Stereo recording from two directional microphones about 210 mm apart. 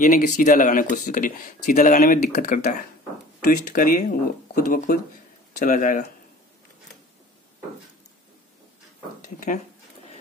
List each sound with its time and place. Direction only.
0.0 s speech: 40° left (ahead or behind)